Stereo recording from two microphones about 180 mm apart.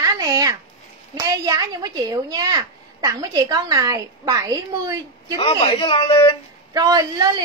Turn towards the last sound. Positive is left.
turn(degrees=-20)  # may be behind; listen again after turning